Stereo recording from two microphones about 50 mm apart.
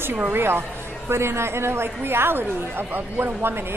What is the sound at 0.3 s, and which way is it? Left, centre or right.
A woman's voice, right.